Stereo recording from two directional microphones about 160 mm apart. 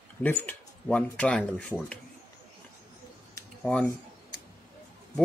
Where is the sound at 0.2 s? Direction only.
10° left (ahead or behind).